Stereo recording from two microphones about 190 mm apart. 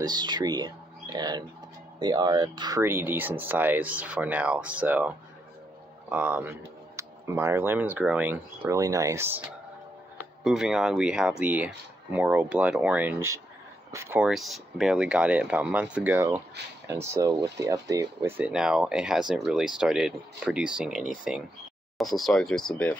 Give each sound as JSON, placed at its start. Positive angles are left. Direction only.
{"t": 0.0, "sound": "speech", "side_deg": -20}
{"t": 10.4, "sound": "speech", "side_deg": -5}
{"t": 18.4, "sound": "speech", "side_deg": -5}